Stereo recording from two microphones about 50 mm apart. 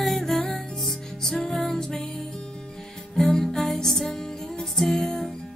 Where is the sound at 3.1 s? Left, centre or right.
Centre.